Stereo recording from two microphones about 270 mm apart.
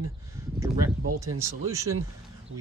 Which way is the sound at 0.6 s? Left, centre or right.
Centre.